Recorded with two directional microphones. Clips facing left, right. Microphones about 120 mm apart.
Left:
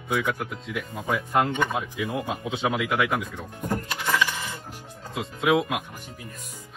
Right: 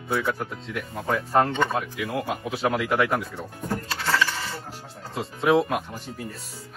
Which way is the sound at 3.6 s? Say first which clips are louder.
Left 1 dB; 15° left (ahead or behind).